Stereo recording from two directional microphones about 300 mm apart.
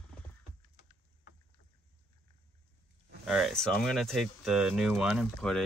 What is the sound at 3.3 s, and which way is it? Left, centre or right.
Speech, centre.